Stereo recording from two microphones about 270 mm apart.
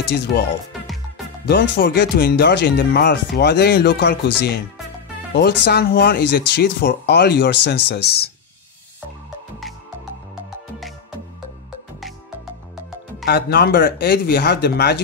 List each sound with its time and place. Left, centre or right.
0.1 s speech: left
1.5 s speech: left
5.3 s speech: left
13.2 s speech: left